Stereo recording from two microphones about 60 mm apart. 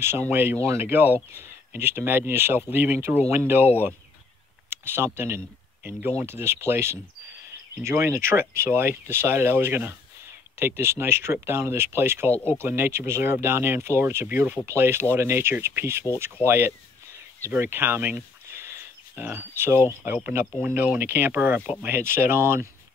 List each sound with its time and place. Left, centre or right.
0.3 s speech: right
0.7 s speech: right
5.9 s speech: right
6.1 s speech: right
14.7 s speech: right
20.6 s speech: right